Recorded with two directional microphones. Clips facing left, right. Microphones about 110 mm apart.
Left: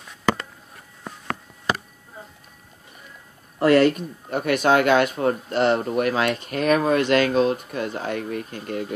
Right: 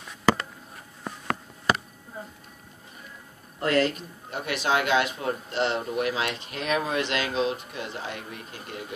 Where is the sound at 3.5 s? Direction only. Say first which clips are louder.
Left 8 dB; 70° left (ahead or behind).